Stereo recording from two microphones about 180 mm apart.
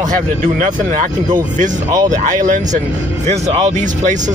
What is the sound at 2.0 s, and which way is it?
Speech, 45° right (ahead or behind).